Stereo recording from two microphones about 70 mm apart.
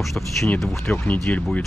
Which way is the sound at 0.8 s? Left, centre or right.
Left.